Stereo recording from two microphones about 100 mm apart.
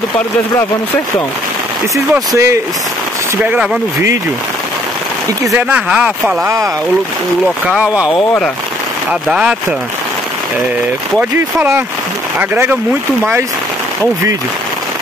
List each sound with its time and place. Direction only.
2.3 s speech: 30° right (ahead or behind)
5.6 s speech: 15° right (ahead or behind)
6.4 s speech: 30° right (ahead or behind)
9.3 s speech: 10° right (ahead or behind)
11.1 s speech: 25° right (ahead or behind)